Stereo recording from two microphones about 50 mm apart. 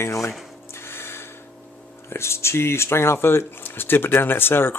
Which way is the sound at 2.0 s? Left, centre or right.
Left.